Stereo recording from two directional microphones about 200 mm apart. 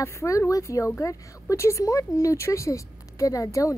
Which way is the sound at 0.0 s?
15° left (ahead or behind).